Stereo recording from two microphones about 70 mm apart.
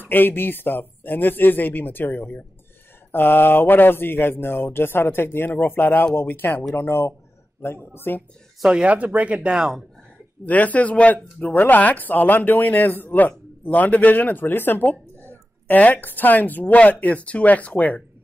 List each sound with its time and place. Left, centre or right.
0.0 s speech: left
8.6 s speech: centre
10.4 s speech: left